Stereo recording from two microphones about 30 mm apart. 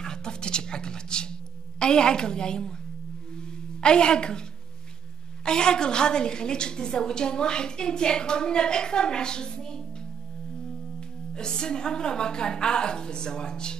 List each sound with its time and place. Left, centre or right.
0.0 s a sound: left
1.8 s a woman's voice: left
3.3 s tuning fork: left
5.4 s a woman's voice: left
11.3 s a woman's voice: left